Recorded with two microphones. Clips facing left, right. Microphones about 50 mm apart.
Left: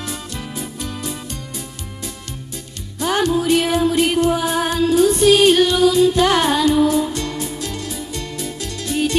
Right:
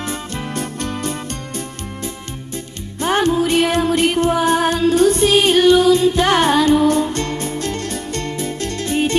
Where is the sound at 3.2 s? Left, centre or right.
Right.